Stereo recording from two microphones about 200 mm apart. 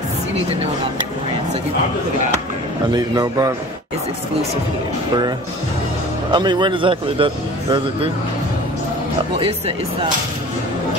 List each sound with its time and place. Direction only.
2.9 s a man's voice: 20° right (ahead or behind)
6.3 s a man's voice: 20° right (ahead or behind)